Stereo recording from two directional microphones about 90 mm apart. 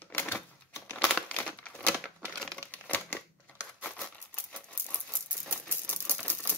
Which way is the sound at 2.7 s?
15° left (ahead or behind).